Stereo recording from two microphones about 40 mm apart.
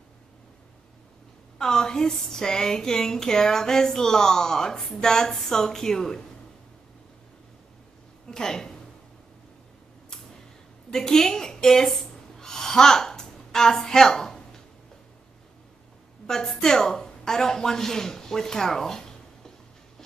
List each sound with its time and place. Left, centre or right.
1.6 s speech: centre
8.3 s a woman's voice: centre
10.9 s a woman's voice: centre
12.4 s a sound: centre
16.3 s a woman's voice: centre